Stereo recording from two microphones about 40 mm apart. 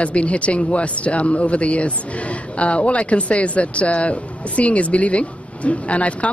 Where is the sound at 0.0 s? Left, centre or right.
Left.